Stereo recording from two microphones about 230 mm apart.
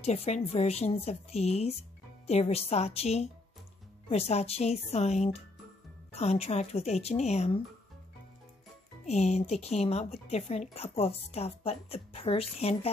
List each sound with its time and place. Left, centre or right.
0.0 s a woman's voice: left
9.0 s a woman's voice: left